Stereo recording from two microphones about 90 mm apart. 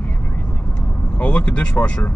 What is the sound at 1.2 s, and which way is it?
Speech, 10° left (ahead or behind).